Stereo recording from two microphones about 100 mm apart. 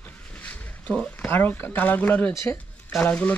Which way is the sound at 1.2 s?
20° left (ahead or behind).